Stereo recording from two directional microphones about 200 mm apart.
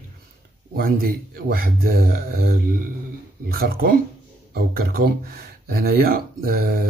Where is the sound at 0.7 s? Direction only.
45° right (ahead or behind).